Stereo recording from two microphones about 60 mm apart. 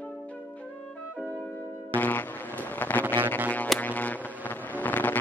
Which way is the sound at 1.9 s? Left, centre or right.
Left.